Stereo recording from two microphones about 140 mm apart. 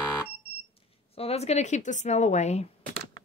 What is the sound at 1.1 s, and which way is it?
A woman's voice, 45° left (ahead or behind).